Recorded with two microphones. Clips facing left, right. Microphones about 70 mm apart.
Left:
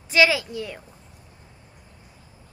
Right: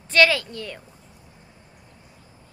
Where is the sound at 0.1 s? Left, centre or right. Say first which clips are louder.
Right 1 dB; centre.